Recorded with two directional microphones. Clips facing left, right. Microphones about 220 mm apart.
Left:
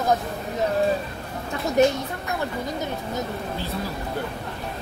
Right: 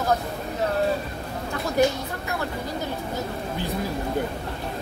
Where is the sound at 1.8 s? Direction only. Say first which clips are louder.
Left 2 dB; 20° left (ahead or behind).